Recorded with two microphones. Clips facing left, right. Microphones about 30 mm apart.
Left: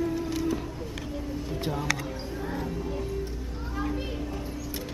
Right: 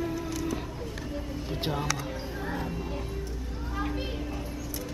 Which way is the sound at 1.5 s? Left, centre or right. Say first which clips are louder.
Right 1 dB; right.